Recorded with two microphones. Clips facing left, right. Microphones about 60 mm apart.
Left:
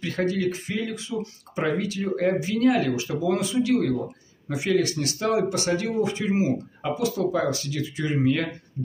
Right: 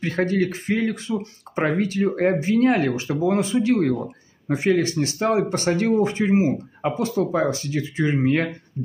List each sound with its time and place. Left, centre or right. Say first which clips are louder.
0.0 s speech: right 3 dB; right